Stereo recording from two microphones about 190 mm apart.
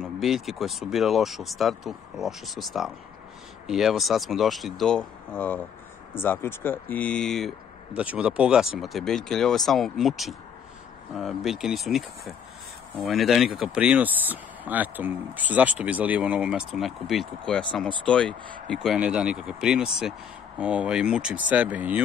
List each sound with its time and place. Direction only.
0.0 s speech: centre (ahead or behind)